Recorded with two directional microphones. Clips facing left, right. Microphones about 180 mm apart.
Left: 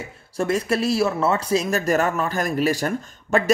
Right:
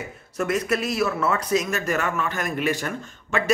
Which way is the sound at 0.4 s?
30° left (ahead or behind).